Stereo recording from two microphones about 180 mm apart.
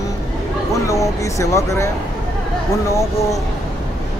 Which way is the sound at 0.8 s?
15° left (ahead or behind).